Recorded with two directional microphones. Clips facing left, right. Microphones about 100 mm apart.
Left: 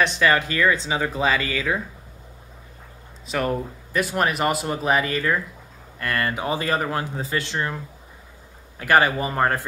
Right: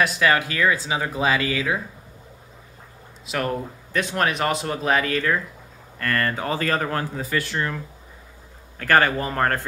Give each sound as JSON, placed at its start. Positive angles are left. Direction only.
{"t": 0.0, "sound": "speech", "side_deg": -5}
{"t": 3.3, "sound": "speech", "side_deg": 0}
{"t": 5.9, "sound": "speech", "side_deg": 15}
{"t": 7.2, "sound": "speech", "side_deg": 25}